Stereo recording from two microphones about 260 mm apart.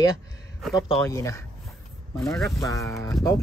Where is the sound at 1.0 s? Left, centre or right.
Centre.